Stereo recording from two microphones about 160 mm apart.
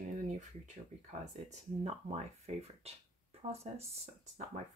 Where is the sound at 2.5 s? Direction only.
40° right (ahead or behind).